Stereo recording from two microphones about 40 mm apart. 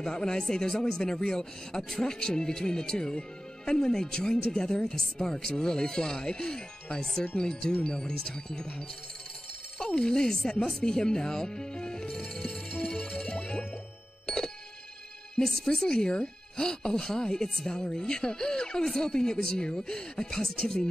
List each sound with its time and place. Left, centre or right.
0.0 s speech: centre
10.8 s music: centre
15.3 s speech: centre